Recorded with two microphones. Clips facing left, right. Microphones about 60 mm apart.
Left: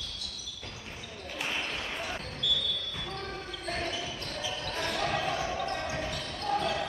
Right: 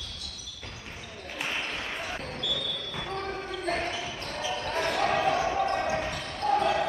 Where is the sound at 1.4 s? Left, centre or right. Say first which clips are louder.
Right 2 dB; centre.